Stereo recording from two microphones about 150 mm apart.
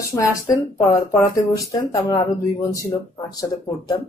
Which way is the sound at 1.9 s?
20° left (ahead or behind).